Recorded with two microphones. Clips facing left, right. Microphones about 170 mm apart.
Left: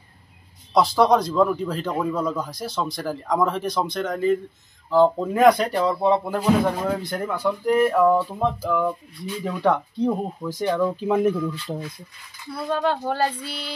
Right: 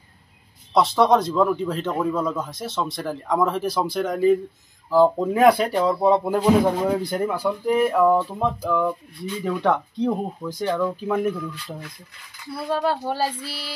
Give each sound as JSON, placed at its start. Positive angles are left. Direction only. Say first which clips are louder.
{"t": 0.7, "sound": "speech", "louder": "even", "side_deg": 0}
{"t": 11.5, "sound": "speech", "louder": "left 5 dB", "side_deg": 25}
{"t": 12.5, "sound": "speech", "louder": "even", "side_deg": -5}